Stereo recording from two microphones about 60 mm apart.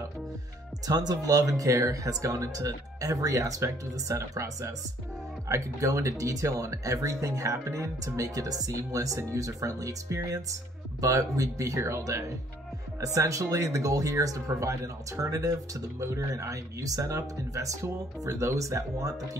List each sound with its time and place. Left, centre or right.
0.8 s speech: right